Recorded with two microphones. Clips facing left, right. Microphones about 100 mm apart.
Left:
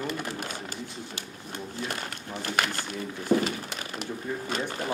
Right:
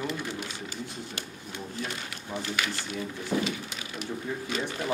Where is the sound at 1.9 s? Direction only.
50° left (ahead or behind).